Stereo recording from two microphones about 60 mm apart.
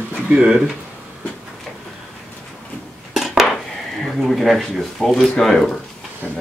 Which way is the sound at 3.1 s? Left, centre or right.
Centre.